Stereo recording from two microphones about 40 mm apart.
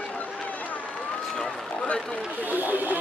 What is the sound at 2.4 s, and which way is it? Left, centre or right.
Speech, right.